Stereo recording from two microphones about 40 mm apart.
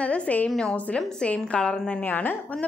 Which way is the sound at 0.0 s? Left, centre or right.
Left.